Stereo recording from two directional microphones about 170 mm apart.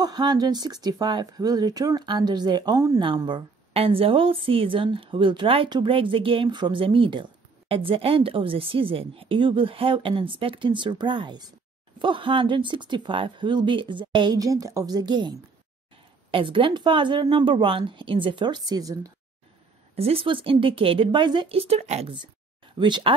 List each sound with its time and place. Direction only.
0.0 s a woman's voice: 25° right (ahead or behind)
20.0 s a woman's voice: 35° right (ahead or behind)
22.8 s speech: 25° right (ahead or behind)